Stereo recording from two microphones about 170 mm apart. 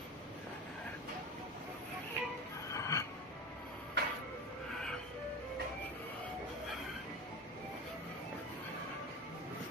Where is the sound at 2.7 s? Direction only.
20° left (ahead or behind).